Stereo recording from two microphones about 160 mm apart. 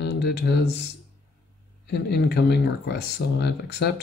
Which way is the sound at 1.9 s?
90° left.